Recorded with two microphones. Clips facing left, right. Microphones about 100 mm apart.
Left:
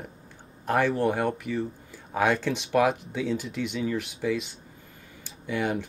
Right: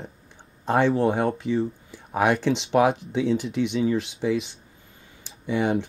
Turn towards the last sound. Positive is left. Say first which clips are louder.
# right 5 dB
turn(degrees=-20)  # may be behind; listen again after turning